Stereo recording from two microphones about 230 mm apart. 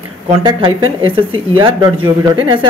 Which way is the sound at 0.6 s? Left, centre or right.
Right.